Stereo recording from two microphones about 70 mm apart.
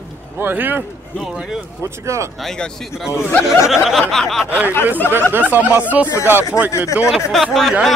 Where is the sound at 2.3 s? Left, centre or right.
Centre.